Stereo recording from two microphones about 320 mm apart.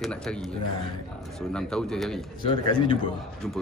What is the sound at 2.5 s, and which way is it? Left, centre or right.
Speech, centre.